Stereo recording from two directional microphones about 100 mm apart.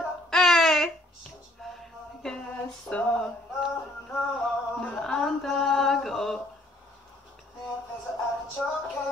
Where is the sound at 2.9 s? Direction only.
10° left (ahead or behind).